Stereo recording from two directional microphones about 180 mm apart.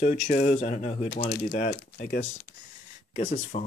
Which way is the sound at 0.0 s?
45° left (ahead or behind).